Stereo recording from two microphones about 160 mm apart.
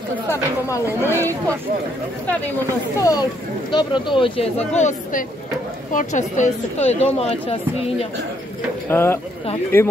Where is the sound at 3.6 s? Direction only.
30° left (ahead or behind).